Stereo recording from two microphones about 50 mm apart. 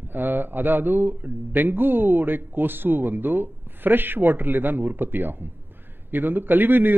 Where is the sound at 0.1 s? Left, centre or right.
Right.